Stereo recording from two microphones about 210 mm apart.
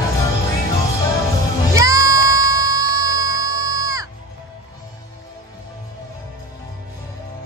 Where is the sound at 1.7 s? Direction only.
15° right (ahead or behind).